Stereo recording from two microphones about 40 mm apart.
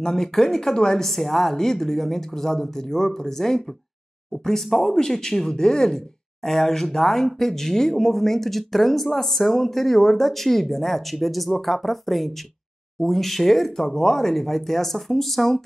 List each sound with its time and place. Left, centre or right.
0.0 s a woman's voice: centre